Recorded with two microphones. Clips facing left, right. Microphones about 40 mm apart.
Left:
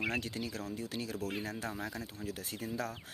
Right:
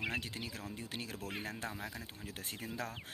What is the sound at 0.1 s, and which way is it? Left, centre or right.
Speech, centre.